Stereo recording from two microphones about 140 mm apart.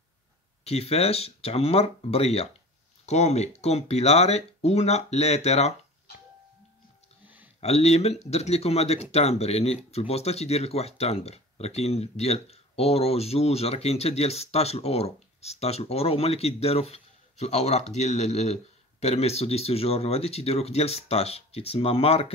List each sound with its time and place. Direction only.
0.7 s speech: 45° left (ahead or behind)
7.6 s speech: 50° left (ahead or behind)